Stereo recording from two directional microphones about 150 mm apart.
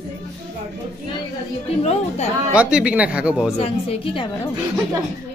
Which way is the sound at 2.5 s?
10° right (ahead or behind).